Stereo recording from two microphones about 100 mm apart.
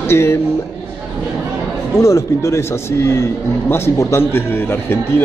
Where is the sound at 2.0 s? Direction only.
30° left (ahead or behind).